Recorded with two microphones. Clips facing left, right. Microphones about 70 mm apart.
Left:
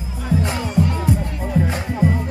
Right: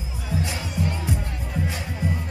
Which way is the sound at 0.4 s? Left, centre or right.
Left.